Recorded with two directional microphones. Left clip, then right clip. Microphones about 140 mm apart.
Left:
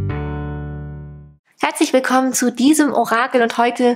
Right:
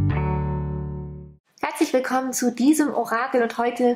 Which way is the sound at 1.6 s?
30° left (ahead or behind).